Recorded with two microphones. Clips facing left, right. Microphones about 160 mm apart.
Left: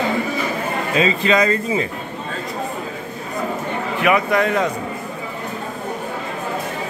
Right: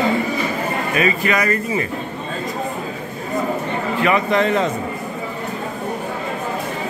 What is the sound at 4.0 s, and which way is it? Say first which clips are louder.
Speech: even; 10° left (ahead or behind).